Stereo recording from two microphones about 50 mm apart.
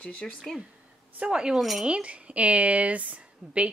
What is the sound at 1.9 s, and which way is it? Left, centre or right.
A woman's voice, right.